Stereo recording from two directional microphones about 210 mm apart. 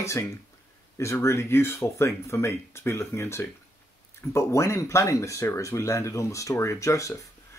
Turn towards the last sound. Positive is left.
turn(degrees=15)  # may be behind; listen again after turning